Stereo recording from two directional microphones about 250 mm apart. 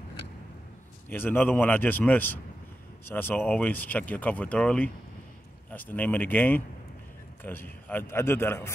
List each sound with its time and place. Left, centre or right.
1.1 s speech: centre